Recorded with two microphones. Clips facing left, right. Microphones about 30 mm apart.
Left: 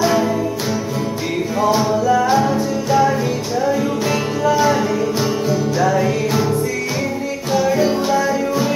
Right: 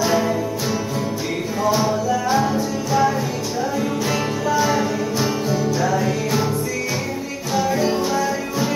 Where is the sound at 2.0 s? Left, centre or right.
Left.